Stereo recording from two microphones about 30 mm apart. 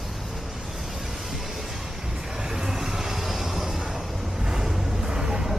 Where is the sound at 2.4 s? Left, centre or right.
Centre.